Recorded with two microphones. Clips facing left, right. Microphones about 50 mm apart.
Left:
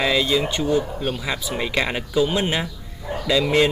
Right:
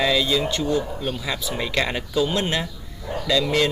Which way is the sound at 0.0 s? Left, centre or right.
Centre.